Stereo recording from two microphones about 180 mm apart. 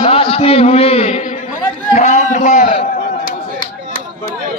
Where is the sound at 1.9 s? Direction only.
40° left (ahead or behind).